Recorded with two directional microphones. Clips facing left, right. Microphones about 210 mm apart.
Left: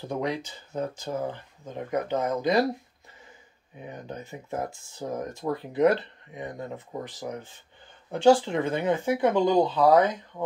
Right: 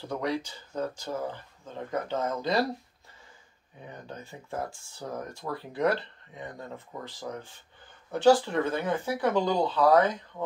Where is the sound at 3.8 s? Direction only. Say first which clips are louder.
Left 4 dB; 15° left (ahead or behind).